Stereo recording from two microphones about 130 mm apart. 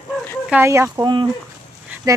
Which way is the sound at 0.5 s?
20° right (ahead or behind).